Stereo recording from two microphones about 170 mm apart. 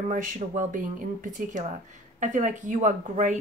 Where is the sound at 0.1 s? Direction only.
50° right (ahead or behind).